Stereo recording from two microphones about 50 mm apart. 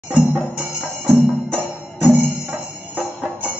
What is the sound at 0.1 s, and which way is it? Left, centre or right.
Music, centre.